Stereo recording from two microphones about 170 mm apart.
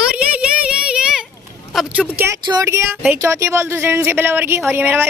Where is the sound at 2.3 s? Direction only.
20° right (ahead or behind).